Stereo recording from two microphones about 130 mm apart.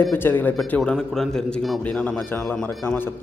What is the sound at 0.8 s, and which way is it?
A man's voice, 5° left (ahead or behind).